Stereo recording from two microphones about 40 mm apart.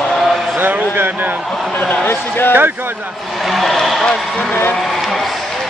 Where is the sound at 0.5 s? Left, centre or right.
Right.